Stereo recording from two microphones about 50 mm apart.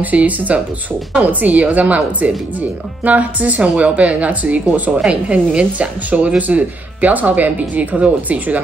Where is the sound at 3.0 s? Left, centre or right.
Right.